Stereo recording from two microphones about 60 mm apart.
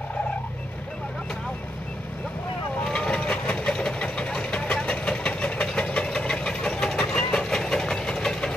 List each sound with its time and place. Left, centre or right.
2.8 s vehicle: centre